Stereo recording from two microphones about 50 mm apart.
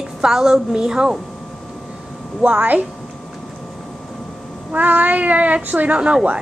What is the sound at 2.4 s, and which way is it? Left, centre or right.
Speech, right.